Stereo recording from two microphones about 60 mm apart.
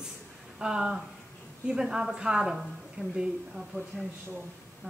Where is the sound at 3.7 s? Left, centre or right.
Right.